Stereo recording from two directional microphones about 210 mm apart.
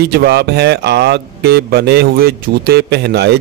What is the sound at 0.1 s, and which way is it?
Speech, 50° right (ahead or behind).